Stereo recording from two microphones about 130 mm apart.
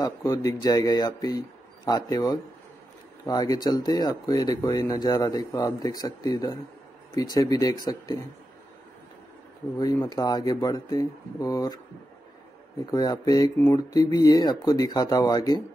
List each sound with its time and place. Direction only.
0.0 s speech: 25° left (ahead or behind)
9.8 s speech: 25° left (ahead or behind)
12.9 s speech: 30° left (ahead or behind)